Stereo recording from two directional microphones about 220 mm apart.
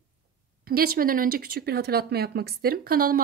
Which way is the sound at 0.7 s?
45° right (ahead or behind).